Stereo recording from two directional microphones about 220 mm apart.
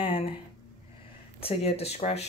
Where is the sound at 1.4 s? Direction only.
25° left (ahead or behind).